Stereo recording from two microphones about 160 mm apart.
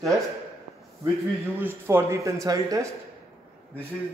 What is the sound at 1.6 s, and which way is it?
Speech, 15° right (ahead or behind).